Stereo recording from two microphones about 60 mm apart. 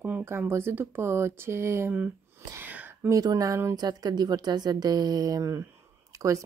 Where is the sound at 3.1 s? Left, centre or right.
Right.